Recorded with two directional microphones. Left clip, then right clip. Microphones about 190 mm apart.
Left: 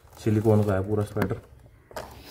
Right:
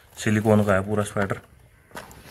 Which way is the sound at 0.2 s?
10° right (ahead or behind).